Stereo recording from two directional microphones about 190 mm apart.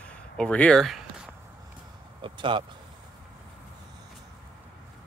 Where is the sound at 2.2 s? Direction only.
25° right (ahead or behind).